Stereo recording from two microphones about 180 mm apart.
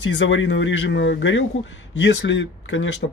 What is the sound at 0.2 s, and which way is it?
Speech, 90° left.